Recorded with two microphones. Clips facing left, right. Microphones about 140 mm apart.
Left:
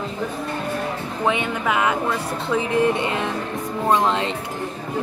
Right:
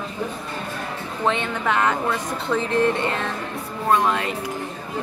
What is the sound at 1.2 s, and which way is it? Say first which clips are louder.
Speech: left 1 dB; 10° left (ahead or behind).